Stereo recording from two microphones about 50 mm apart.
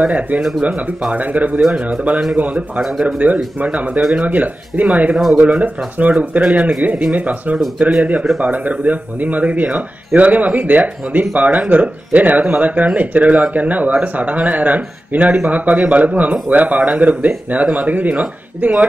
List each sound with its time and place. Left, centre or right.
0.0 s speech: right
5.1 s speech: centre
5.4 s speech: right